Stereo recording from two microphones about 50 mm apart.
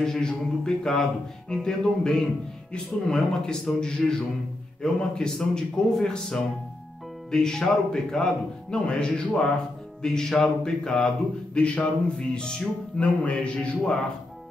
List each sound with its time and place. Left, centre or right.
0.0 s a man's voice: centre